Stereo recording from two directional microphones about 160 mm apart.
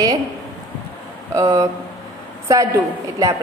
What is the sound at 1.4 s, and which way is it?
A woman's voice, 20° right (ahead or behind).